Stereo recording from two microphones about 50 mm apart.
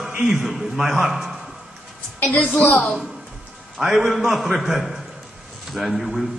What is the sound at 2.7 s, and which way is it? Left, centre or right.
Speech, centre.